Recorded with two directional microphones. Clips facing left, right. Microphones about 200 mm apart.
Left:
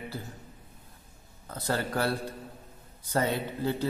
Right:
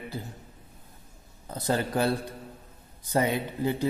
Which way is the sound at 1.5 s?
20° right (ahead or behind).